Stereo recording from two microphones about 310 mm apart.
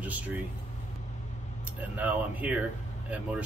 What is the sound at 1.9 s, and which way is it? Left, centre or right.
Speech, centre.